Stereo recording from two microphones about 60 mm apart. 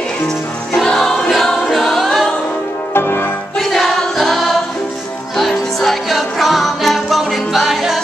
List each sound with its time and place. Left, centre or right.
0.8 s music: centre
2.9 s music: left
3.5 s music: centre